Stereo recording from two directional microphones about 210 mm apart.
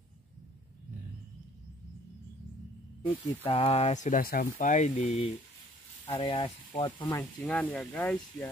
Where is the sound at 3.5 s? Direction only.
30° left (ahead or behind).